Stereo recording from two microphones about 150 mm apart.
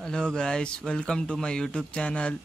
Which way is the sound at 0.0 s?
5° left (ahead or behind).